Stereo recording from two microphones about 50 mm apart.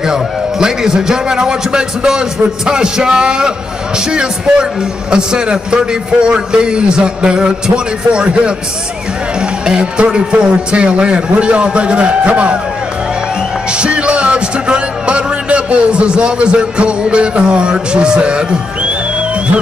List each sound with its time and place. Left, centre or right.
0.0 s a man's voice: centre
13.7 s music: right